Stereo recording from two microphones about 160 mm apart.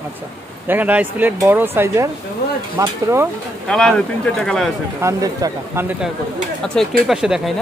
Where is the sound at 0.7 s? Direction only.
10° right (ahead or behind).